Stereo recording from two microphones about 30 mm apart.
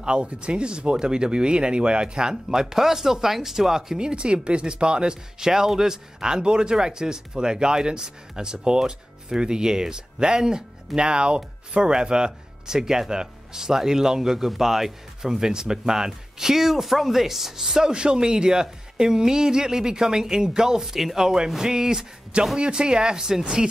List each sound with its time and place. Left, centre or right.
0.0 s speech: right
2.5 s speech: centre
4.0 s speech: right
5.4 s speech: centre
17.9 s speech: right
22.6 s speech: right